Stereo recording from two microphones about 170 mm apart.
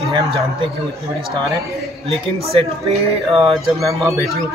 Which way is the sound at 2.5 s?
35° right (ahead or behind).